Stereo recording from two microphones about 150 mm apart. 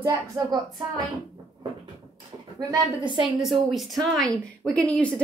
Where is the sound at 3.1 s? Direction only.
Centre (ahead or behind).